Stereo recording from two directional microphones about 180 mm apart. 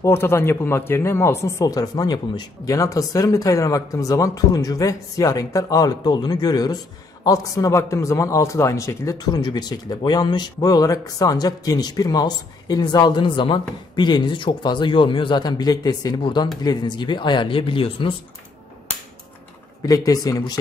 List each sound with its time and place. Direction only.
0.0 s speech: 15° left (ahead or behind); by 18.1 s 30° left (ahead or behind)
19.9 s speech: 20° left (ahead or behind)